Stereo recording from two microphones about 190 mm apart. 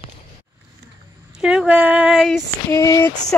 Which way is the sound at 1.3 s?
5° right (ahead or behind).